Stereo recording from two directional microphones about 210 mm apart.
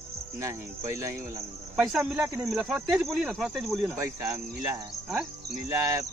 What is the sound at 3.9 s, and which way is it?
Speech, 15° right (ahead or behind).